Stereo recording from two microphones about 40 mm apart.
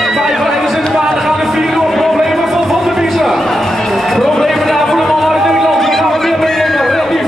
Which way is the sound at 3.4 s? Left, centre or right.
Centre.